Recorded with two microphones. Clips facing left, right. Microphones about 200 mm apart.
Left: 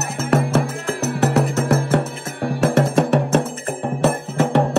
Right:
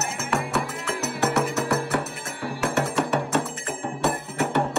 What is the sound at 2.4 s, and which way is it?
Music, 40° left (ahead or behind).